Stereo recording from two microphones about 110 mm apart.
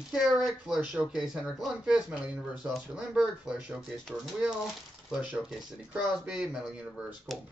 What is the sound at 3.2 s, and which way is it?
Speech, 5° right (ahead or behind).